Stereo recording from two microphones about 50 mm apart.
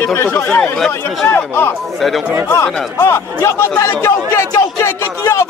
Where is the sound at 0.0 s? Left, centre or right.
Left.